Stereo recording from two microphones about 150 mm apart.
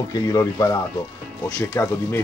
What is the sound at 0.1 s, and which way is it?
Speech, 20° left (ahead or behind).